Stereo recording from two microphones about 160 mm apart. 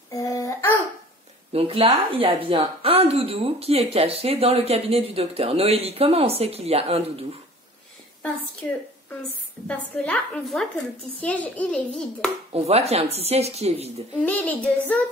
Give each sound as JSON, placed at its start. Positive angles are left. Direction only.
{"t": 0.1, "sound": "a sound", "side_deg": 20}
{"t": 1.5, "sound": "speech", "side_deg": -35}
{"t": 8.6, "sound": "a child's voice", "side_deg": 10}
{"t": 12.5, "sound": "speech", "side_deg": -40}
{"t": 14.1, "sound": "a child's voice", "side_deg": 10}